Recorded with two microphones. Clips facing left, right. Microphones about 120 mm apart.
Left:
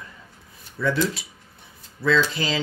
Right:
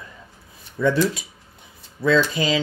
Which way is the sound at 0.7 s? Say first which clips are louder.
Right 4 dB; 15° right (ahead or behind).